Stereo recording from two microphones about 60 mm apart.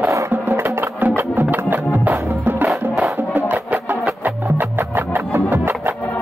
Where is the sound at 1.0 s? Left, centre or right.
Right.